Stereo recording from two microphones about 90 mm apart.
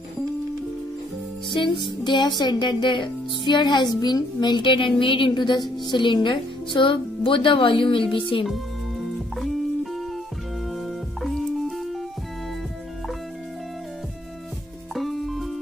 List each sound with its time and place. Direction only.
1.5 s speech: 60° left (ahead or behind)
15.0 s music: centre (ahead or behind)